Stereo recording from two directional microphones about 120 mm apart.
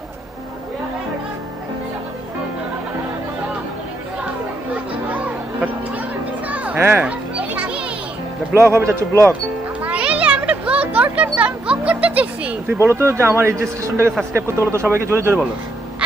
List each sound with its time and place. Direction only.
5.0 s music: 10° right (ahead or behind)
6.5 s children playing: 10° right (ahead or behind)
8.5 s a man's voice: 20° right (ahead or behind)
9.8 s children playing: 10° right (ahead or behind)
12.7 s a man's voice: 20° right (ahead or behind)